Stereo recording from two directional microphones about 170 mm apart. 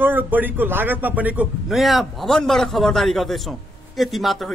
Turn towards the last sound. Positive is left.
turn(degrees=0)  # may be behind; listen again after turning